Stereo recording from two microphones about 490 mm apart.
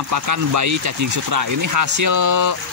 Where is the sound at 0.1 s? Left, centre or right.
Right.